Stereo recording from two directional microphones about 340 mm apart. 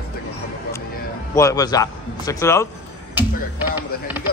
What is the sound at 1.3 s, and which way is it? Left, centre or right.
A man's voice, centre.